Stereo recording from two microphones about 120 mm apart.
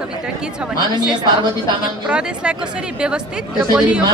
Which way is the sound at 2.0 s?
10° right (ahead or behind).